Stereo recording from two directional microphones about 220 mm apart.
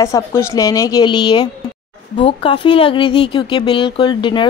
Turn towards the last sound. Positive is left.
turn(degrees=20)  # may be behind; listen again after turning